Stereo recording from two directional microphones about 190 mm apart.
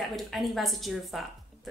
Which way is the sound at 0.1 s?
Centre (ahead or behind).